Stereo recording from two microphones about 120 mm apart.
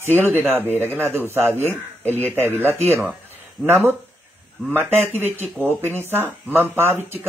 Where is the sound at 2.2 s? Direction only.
20° right (ahead or behind).